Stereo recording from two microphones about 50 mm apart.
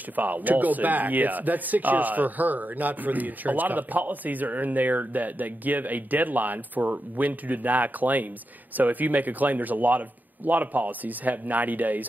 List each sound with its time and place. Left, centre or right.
0.1 s speech: right